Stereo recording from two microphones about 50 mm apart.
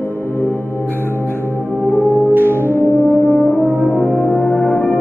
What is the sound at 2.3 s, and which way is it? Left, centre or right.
Music, right.